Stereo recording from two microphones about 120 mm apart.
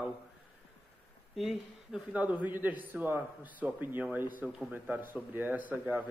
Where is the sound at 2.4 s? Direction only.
15° right (ahead or behind).